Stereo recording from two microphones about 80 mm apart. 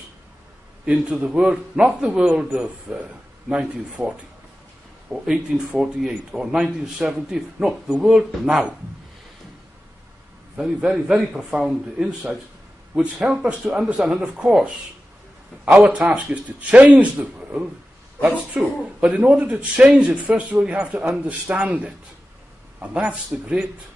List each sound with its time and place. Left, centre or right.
0.8 s a man's voice: centre
5.2 s a man's voice: centre
10.5 s a man's voice: centre